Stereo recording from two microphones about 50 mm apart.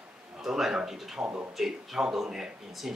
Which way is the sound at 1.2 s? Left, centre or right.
Right.